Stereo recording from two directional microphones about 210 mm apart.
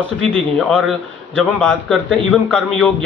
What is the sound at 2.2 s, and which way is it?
Speech, centre (ahead or behind).